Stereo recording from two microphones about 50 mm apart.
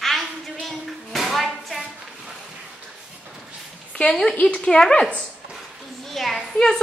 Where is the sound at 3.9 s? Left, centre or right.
Centre.